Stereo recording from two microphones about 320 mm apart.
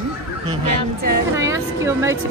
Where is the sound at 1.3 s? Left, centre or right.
Centre.